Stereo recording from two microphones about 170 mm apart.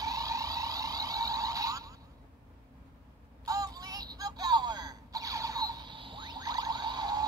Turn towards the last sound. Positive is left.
turn(degrees=-25)  # may be behind; listen again after turning